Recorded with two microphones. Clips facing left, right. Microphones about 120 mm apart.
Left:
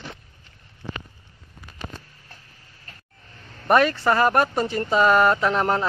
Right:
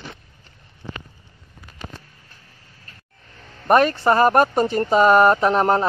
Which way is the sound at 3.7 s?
40° right (ahead or behind).